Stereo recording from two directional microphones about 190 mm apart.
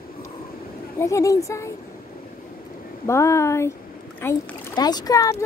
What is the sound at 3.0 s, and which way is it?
A woman's voice, 15° left (ahead or behind).